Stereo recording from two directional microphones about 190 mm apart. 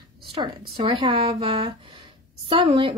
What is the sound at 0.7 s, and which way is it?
A woman's voice, 25° right (ahead or behind).